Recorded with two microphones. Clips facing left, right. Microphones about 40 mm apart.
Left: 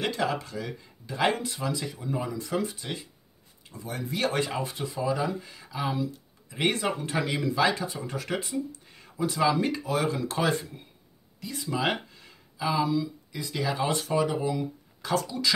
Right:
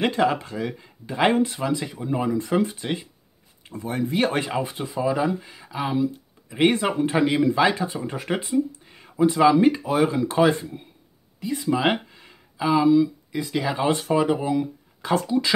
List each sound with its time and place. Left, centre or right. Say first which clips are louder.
0.0 s speech: right 7 dB; right